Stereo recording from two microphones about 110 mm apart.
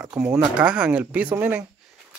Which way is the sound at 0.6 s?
10° right (ahead or behind).